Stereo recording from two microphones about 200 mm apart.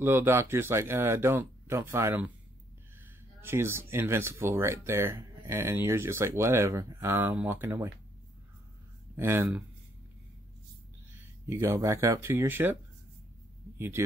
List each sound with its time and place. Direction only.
0.0 s speech: 10° right (ahead or behind)
3.3 s speech: 10° right (ahead or behind)
9.1 s speech: 15° right (ahead or behind)
11.4 s speech: 15° right (ahead or behind)
13.7 s speech: 10° right (ahead or behind)